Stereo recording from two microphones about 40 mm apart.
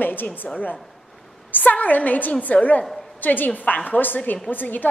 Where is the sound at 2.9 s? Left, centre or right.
Centre.